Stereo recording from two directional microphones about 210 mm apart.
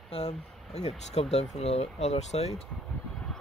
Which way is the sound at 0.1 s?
25° left (ahead or behind).